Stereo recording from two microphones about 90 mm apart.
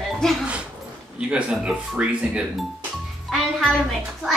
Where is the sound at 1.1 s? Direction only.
10° right (ahead or behind).